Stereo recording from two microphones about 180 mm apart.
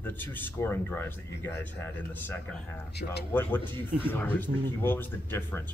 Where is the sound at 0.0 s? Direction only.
10° left (ahead or behind).